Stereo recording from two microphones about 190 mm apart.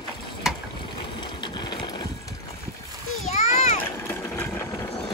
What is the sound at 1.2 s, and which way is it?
Sewing machine, 25° left (ahead or behind).